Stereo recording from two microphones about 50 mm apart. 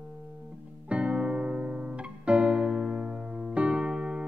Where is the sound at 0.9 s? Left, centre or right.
Right.